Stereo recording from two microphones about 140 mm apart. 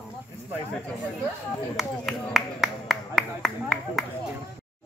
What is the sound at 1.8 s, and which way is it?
Speech, centre (ahead or behind).